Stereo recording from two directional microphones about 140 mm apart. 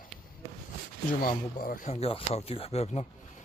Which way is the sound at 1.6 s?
80° left.